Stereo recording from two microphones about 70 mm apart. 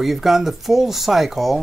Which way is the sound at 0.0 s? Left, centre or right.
Centre.